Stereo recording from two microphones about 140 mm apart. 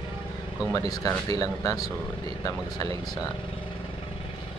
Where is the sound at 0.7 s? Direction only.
25° left (ahead or behind).